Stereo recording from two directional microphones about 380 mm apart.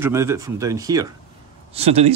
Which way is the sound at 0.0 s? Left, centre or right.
Centre.